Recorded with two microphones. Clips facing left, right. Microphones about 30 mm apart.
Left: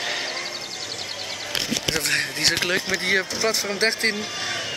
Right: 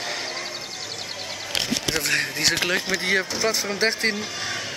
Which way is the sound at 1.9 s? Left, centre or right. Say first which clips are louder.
Right 1 dB; centre.